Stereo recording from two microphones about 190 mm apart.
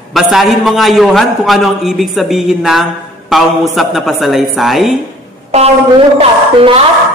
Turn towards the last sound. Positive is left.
turn(degrees=-30)  # may be behind; listen again after turning